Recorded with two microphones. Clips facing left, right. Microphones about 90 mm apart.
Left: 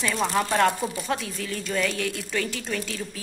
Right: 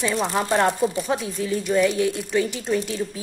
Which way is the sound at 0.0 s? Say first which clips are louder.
Right 2 dB; 20° right (ahead or behind).